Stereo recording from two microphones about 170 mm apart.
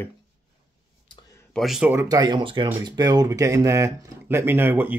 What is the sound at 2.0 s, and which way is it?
Speech, 25° right (ahead or behind).